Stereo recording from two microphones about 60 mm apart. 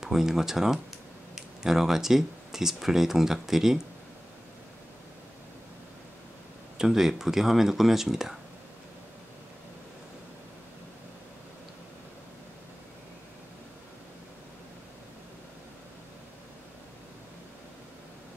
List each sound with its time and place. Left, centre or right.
0.0 s speech: centre
6.8 s speech: centre